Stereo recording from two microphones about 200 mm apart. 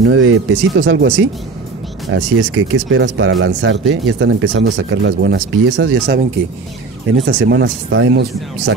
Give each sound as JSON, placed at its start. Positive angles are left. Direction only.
{"t": 0.0, "sound": "speech", "side_deg": -75}
{"t": 7.2, "sound": "speech", "side_deg": -60}